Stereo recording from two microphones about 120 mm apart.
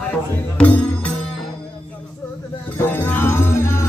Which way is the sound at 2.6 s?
15° left (ahead or behind).